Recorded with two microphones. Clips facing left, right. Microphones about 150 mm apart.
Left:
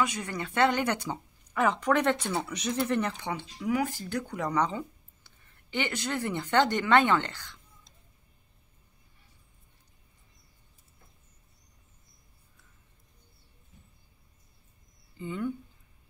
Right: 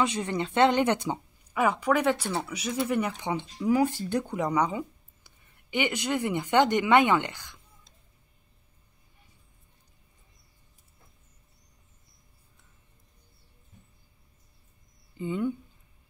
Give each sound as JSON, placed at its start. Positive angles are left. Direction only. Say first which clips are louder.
{"t": 0.0, "sound": "speech", "louder": "right 3 dB", "side_deg": -25}
{"t": 1.5, "sound": "speech", "louder": "right 1 dB", "side_deg": -10}
{"t": 15.1, "sound": "speech", "louder": "right 4 dB", "side_deg": -20}